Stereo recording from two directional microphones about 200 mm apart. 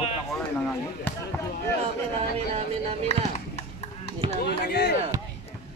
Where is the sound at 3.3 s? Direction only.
30° left (ahead or behind).